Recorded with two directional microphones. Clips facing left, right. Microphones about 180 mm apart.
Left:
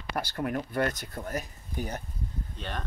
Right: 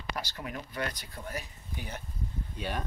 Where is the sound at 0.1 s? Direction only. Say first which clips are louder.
Left 7 dB; 55° left (ahead or behind).